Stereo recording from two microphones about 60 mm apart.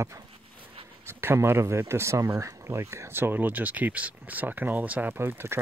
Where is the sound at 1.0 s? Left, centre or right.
Right.